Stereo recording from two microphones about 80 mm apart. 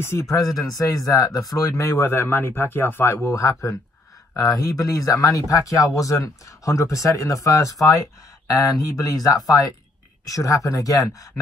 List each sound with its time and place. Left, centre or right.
0.0 s speech: left
0.7 s speech: left